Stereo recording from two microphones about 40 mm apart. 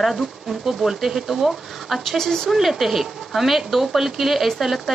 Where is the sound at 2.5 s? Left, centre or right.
Centre.